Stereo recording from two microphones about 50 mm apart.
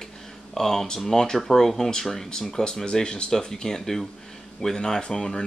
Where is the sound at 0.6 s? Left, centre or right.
Centre.